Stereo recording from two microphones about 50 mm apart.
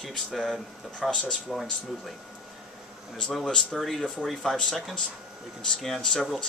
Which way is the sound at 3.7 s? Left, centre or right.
Centre.